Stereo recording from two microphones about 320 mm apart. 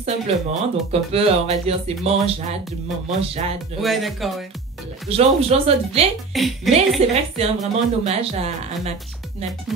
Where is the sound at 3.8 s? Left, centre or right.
Centre.